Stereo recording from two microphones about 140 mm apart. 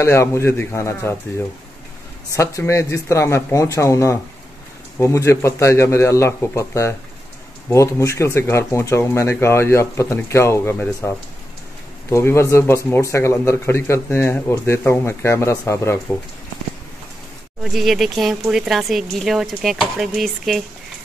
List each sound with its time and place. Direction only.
0.0 s a man's voice: 20° left (ahead or behind)
2.3 s a man's voice: 20° left (ahead or behind)
17.6 s speech: centre (ahead or behind)